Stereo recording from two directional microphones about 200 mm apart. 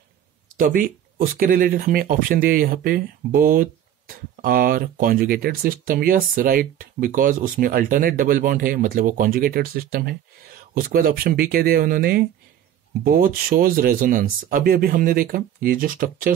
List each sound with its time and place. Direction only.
0.6 s speech: 45° right (ahead or behind)